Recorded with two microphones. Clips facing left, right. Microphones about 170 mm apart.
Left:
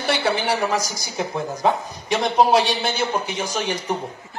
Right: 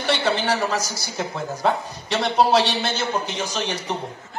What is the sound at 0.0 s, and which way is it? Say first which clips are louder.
A woman's voice: even; 10° left (ahead or behind).